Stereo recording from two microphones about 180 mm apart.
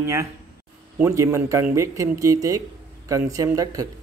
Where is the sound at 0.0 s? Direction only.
15° right (ahead or behind).